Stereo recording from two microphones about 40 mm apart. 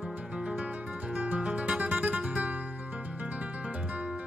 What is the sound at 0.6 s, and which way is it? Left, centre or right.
Music, right.